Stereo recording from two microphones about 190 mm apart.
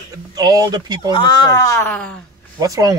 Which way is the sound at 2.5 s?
20° right (ahead or behind).